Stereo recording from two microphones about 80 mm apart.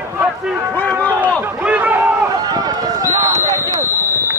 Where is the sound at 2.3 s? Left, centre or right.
Right.